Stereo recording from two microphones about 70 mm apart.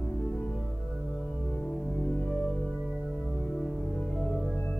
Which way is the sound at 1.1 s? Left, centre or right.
Centre.